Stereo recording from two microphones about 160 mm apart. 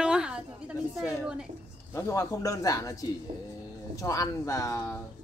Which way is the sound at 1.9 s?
20° left (ahead or behind).